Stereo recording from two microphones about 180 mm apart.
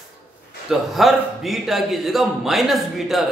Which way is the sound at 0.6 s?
Centre (ahead or behind).